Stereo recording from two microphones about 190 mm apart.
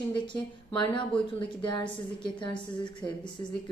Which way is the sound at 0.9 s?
25° left (ahead or behind).